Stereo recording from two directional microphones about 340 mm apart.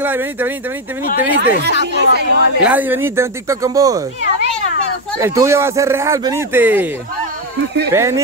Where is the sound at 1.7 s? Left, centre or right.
Left.